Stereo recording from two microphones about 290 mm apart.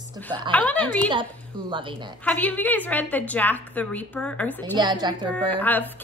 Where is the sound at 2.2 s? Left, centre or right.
Centre.